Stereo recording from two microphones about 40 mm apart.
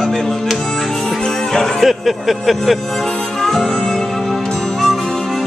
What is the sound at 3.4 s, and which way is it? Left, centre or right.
Music, centre.